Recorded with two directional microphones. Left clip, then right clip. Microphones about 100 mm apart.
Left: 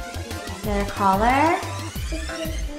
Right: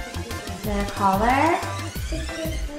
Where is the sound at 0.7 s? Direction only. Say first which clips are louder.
Left 1 dB; 20° left (ahead or behind).